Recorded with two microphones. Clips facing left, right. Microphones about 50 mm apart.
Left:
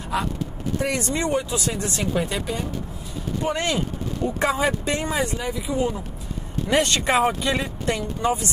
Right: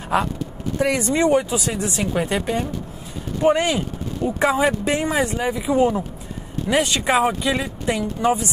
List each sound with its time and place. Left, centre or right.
0.1 s speech: right
0.7 s speech: right
1.7 s speech: centre
2.2 s speech: right
3.4 s speech: centre
6.7 s speech: centre
7.8 s speech: centre